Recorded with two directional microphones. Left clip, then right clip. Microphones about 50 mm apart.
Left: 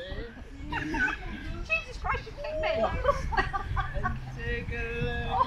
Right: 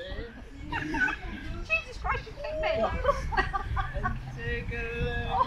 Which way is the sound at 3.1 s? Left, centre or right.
Right.